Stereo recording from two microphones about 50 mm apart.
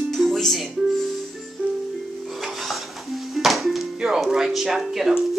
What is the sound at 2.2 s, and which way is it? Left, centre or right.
Music, centre.